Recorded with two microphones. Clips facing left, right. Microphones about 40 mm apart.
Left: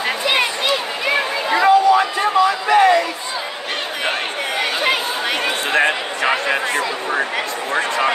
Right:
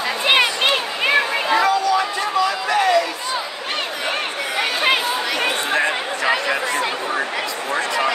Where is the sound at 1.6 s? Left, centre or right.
Left.